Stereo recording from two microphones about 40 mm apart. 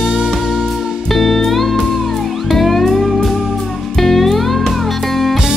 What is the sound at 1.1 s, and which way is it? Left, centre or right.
Music, centre.